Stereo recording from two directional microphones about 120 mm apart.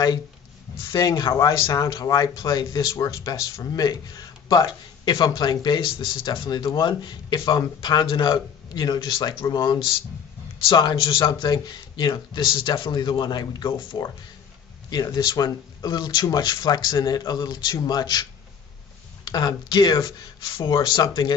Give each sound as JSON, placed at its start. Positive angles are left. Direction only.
{"t": 0.9, "sound": "speech", "side_deg": 30}
{"t": 19.2, "sound": "speech", "side_deg": 40}